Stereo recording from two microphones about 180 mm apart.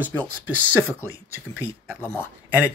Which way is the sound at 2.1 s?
10° right (ahead or behind).